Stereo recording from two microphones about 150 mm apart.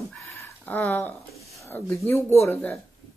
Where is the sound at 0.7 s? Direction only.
10° left (ahead or behind).